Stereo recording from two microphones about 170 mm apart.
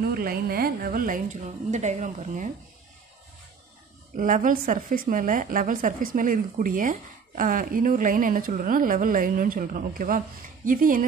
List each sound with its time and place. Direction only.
0.1 s a woman's voice: 60° right (ahead or behind); by 2.5 s 45° right (ahead or behind)
4.2 s a woman's voice: 50° right (ahead or behind)